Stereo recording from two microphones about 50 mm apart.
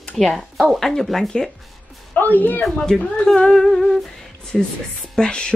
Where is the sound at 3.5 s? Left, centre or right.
Centre.